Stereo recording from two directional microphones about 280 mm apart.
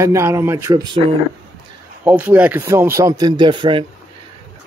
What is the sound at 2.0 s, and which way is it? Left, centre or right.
Speech, centre.